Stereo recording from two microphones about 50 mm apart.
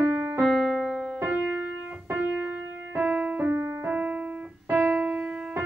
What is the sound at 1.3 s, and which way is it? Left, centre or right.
Music, right.